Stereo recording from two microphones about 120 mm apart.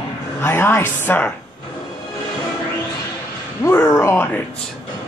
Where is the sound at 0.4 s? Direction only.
20° left (ahead or behind).